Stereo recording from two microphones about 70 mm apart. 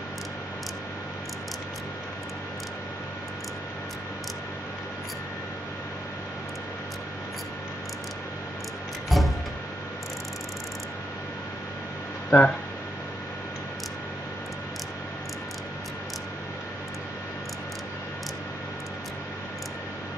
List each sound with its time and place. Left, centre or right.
9.1 s music: centre
12.3 s speech: centre